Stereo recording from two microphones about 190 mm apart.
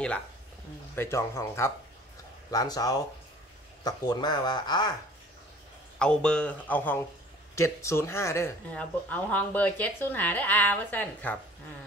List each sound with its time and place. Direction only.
0.9 s speech: 15° left (ahead or behind)
5.9 s speech: 5° left (ahead or behind)